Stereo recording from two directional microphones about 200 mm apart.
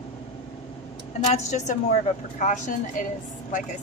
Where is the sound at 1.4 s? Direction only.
35° left (ahead or behind).